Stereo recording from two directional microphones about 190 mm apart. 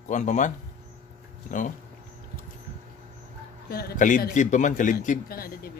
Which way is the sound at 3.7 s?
55° left (ahead or behind).